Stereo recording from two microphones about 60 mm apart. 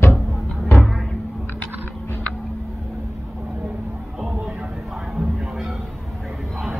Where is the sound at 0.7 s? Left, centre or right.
Centre.